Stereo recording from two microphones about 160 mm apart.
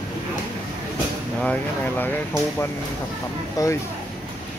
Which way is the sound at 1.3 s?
10° left (ahead or behind).